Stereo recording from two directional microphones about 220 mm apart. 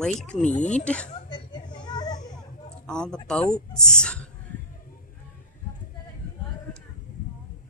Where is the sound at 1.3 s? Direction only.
20° left (ahead or behind).